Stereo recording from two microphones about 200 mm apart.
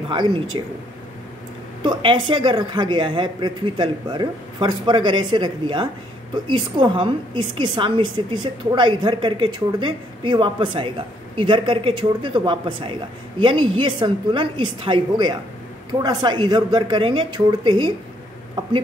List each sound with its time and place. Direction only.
0.1 s a woman's voice: 25° right (ahead or behind)
1.8 s a woman's voice: 25° right (ahead or behind)